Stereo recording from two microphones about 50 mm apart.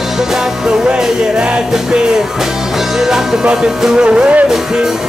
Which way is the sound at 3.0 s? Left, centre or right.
Centre.